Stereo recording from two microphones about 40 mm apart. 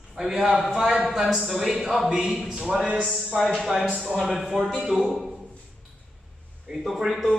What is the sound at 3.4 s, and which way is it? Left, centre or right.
Speech, centre.